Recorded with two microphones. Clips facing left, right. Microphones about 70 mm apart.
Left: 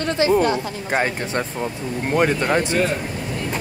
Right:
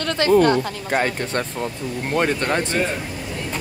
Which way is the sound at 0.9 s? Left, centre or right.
Centre.